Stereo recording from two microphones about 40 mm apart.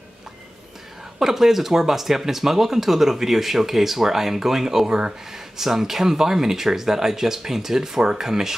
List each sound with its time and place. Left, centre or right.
1.2 s speech: centre
4.8 s speech: right
5.6 s speech: centre